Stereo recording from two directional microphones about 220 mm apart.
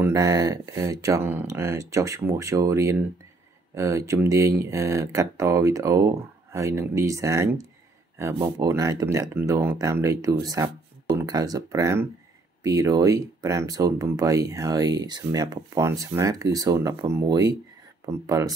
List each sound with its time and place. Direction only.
0.0 s speech: 15° right (ahead or behind)